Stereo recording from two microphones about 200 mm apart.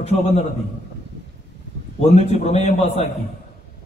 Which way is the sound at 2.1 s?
30° left (ahead or behind).